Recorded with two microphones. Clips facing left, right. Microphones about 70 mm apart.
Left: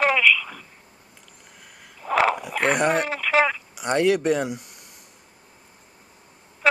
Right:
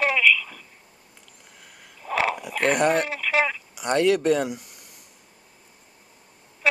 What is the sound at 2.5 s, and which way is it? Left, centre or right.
Speech, centre.